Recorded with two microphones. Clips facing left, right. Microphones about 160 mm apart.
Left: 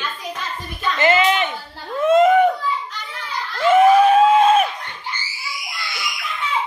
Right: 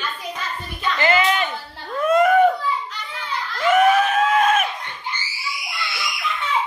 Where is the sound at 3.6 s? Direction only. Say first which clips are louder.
Left 4 dB; 25° left (ahead or behind).